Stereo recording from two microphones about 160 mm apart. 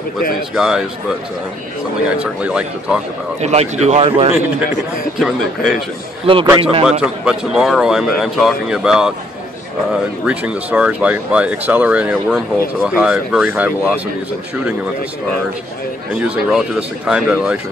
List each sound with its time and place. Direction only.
0.6 s speech: centre (ahead or behind)
2.4 s speech: 5° right (ahead or behind)
3.3 s speech: 45° right (ahead or behind)
5.2 s speech: centre (ahead or behind)
6.2 s a man's voice: 35° right (ahead or behind)
6.9 s speech: 5° right (ahead or behind)
10.2 s speech: 10° right (ahead or behind)
16.2 s speech: 5° right (ahead or behind)